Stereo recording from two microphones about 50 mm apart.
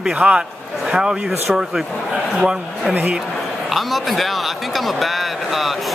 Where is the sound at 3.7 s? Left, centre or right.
Centre.